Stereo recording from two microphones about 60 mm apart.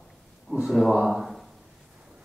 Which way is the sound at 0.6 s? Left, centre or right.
Centre.